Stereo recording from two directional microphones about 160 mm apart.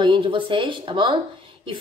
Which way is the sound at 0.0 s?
30° right (ahead or behind).